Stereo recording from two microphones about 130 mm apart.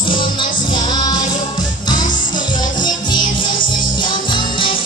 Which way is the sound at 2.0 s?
85° left.